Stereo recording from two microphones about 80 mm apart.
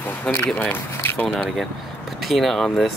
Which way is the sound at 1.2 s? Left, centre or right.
Centre.